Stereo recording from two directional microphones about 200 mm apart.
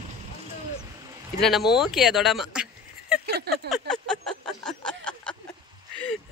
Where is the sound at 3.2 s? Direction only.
55° right (ahead or behind).